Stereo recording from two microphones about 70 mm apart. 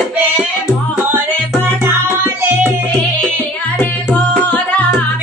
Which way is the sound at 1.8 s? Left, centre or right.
Right.